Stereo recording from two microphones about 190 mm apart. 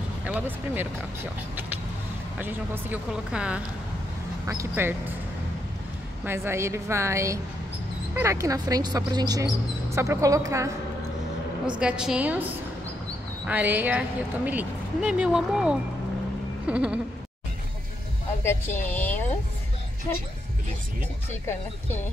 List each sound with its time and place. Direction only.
0.2 s speech: 10° right (ahead or behind)
2.3 s speech: 10° right (ahead or behind)
6.2 s speech: 15° right (ahead or behind)
11.8 s a woman's voice: 5° right (ahead or behind)
13.5 s speech: 10° right (ahead or behind)
18.4 s a woman's voice: 15° left (ahead or behind)
18.9 s a sound: 10° left (ahead or behind)